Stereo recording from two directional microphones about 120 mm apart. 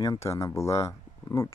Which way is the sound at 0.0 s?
25° left (ahead or behind).